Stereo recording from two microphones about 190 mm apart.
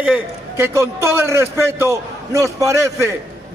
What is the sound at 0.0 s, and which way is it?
A man's voice, 10° right (ahead or behind).